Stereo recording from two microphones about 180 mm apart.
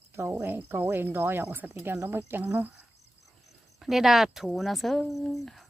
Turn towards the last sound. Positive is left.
turn(degrees=0)  # may be behind; listen again after turning